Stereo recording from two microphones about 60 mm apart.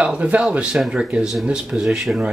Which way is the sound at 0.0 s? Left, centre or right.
Right.